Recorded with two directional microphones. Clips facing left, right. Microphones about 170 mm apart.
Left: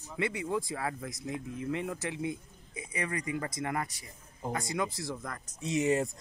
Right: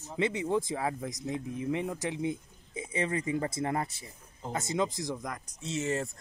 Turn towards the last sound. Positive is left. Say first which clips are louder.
# left 4 dB
turn(degrees=15)  # may be behind; listen again after turning